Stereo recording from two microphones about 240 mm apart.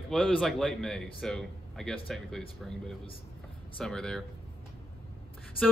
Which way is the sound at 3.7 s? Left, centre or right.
Centre.